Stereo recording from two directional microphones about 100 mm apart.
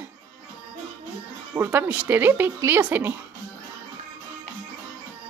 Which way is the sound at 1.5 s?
25° right (ahead or behind).